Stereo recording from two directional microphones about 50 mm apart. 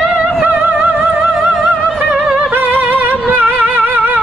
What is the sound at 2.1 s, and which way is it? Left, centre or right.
Music, centre.